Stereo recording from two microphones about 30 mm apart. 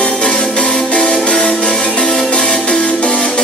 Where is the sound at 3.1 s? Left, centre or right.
Centre.